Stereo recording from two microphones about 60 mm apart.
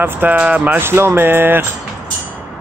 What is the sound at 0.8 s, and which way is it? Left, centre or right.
Speech, right.